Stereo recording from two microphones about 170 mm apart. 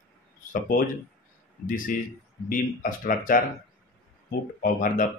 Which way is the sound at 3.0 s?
55° left (ahead or behind).